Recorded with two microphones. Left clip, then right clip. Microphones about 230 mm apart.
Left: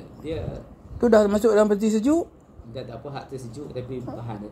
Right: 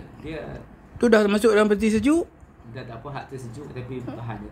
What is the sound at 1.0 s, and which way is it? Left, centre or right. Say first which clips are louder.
Speech: left 1 dB; right.